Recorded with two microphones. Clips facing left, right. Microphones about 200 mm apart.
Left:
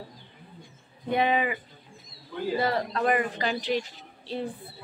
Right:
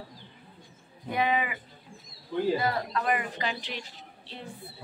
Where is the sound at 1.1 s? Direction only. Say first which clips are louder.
Left 3 dB; 30° left (ahead or behind).